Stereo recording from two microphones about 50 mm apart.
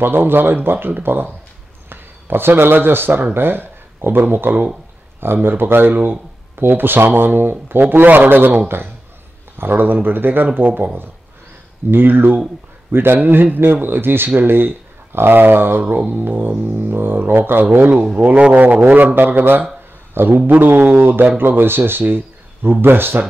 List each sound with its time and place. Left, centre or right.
0.0 s a man's voice: right
11.9 s a man's voice: right